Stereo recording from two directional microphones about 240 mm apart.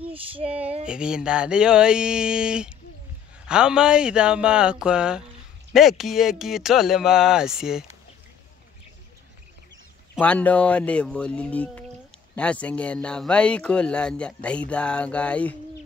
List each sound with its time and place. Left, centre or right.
0.1 s female singing: right
0.8 s speech: centre
10.1 s speech: centre